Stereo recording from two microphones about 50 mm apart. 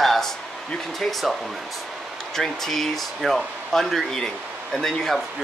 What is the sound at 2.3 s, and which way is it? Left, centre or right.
Speech, centre.